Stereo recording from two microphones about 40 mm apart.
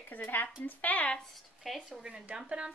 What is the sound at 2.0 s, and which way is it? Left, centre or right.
Speech, right.